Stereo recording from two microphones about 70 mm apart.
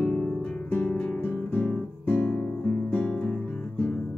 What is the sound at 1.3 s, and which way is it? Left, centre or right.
Guitar, left.